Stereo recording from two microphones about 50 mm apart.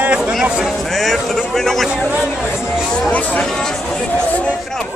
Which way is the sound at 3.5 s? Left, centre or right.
Centre.